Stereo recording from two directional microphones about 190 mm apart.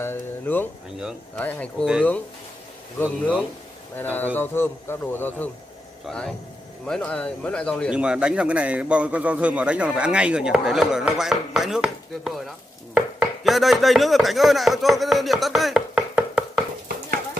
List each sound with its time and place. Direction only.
0.0 s speech: 10° left (ahead or behind)
0.9 s speech: 5° right (ahead or behind)
1.4 s speech: 5° left (ahead or behind)
3.0 s speech: 10° right (ahead or behind)
3.9 s speech: 10° left (ahead or behind)
16.8 s a sound: 50° right (ahead or behind)